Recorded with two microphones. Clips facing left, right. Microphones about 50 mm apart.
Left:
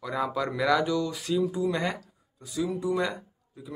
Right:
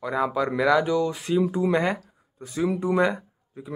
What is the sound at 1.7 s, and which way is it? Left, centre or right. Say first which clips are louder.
Speech: right 6 dB; right.